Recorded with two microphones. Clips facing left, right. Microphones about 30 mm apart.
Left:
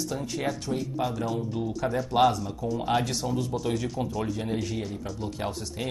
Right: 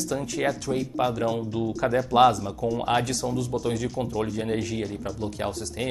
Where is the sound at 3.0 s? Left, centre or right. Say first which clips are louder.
Right 2 dB; left.